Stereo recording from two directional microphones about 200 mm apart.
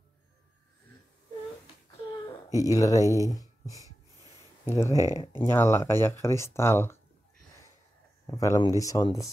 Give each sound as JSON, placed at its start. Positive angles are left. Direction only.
{"t": 2.5, "sound": "speech", "side_deg": 15}
{"t": 3.8, "sound": "wheeze", "side_deg": -20}
{"t": 4.6, "sound": "speech", "side_deg": 15}
{"t": 8.3, "sound": "speech", "side_deg": 15}